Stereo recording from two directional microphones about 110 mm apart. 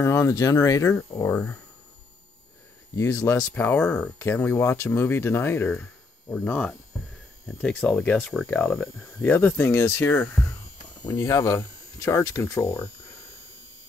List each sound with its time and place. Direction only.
0.0 s speech: 25° left (ahead or behind)
3.0 s speech: 25° left (ahead or behind)
3.5 s speech: 15° left (ahead or behind)
6.3 s speech: 10° left (ahead or behind)
11.1 s speech: 35° left (ahead or behind)